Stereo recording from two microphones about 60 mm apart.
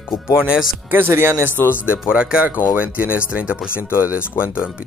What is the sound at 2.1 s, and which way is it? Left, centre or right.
Speech, centre.